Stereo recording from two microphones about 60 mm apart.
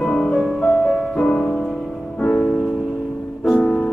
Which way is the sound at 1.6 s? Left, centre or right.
Centre.